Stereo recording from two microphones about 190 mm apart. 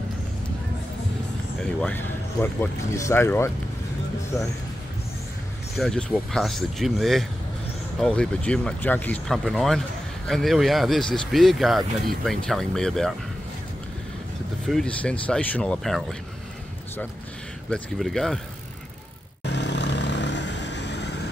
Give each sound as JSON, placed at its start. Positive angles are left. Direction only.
{"t": 1.6, "sound": "speech", "side_deg": 5}
{"t": 5.8, "sound": "speech", "side_deg": 5}
{"t": 14.7, "sound": "speech", "side_deg": 5}
{"t": 17.6, "sound": "speech", "side_deg": 5}
{"t": 19.4, "sound": "vehicle", "side_deg": 65}